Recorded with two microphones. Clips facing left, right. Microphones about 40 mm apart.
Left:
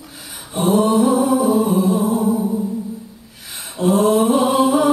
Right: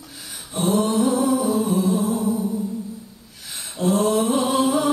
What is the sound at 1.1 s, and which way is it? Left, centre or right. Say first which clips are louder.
Music: left 4 dB; centre.